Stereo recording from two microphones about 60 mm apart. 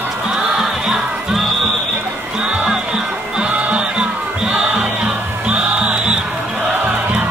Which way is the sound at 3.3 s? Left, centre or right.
Centre.